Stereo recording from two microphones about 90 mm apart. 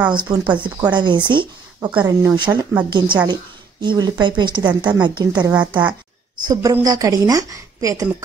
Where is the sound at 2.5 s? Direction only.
35° right (ahead or behind).